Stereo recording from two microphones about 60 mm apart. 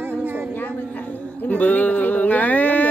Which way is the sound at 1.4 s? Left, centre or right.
Left.